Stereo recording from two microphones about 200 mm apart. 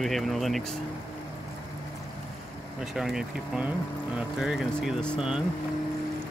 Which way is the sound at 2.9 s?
Centre (ahead or behind).